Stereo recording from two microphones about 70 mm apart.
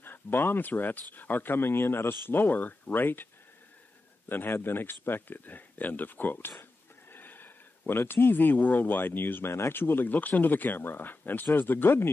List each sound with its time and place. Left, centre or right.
0.0 s speech: left
4.3 s speech: left